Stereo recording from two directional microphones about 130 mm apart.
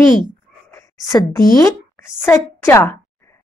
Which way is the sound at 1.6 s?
20° left (ahead or behind).